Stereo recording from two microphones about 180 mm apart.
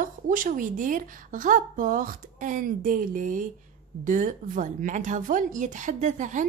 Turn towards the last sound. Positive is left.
turn(degrees=-45)  # may be behind; listen again after turning